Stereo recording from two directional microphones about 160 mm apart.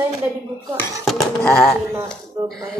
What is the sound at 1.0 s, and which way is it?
Speech, centre (ahead or behind).